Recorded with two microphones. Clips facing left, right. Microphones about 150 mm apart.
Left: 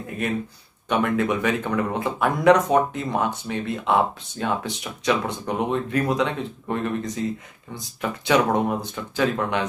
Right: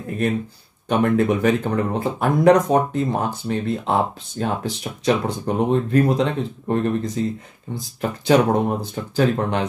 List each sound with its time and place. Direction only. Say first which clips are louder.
0.8 s speech: right 4 dB; 35° right (ahead or behind)